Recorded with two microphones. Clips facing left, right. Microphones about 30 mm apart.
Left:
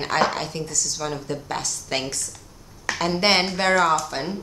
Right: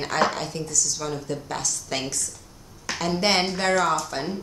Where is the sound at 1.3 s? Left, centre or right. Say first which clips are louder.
Left 1 dB; left.